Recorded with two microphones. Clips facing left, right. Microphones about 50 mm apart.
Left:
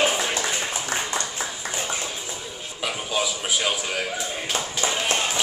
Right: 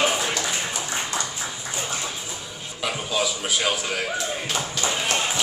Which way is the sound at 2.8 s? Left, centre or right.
Centre.